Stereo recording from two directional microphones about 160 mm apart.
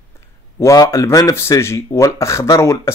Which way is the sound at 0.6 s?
20° left (ahead or behind).